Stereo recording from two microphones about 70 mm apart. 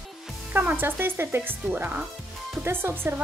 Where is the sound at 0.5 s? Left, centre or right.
Right.